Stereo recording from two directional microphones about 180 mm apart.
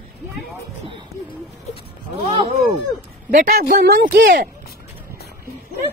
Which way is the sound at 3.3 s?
50° right (ahead or behind).